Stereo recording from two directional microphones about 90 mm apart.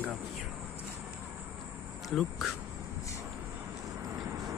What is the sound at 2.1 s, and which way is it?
Speech, centre (ahead or behind).